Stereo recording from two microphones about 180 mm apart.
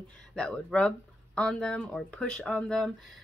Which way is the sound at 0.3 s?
Centre (ahead or behind).